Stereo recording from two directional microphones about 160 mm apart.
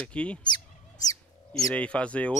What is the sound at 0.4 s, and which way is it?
Fowl, 25° left (ahead or behind).